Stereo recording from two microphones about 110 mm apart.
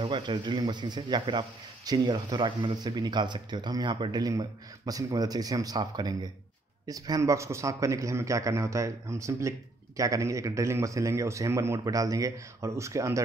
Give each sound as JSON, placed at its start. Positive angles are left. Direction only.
{"t": 0.0, "sound": "a man's voice", "side_deg": -45}